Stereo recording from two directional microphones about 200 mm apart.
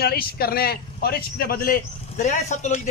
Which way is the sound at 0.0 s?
50° left (ahead or behind).